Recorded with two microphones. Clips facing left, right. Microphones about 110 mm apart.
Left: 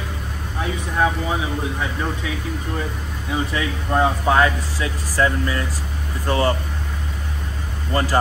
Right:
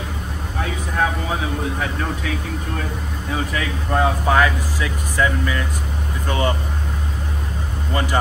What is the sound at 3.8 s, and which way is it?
Speech, 5° left (ahead or behind).